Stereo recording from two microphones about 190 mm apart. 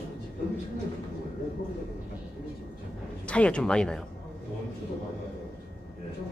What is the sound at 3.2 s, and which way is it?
Speech, 5° left (ahead or behind).